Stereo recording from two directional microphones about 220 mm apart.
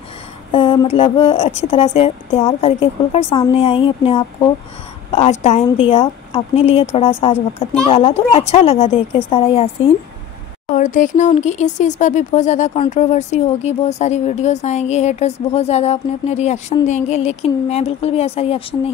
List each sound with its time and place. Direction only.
0.5 s a woman's voice: 25° left (ahead or behind)